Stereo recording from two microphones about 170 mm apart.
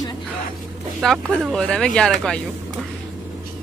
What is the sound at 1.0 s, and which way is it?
Speech, centre (ahead or behind).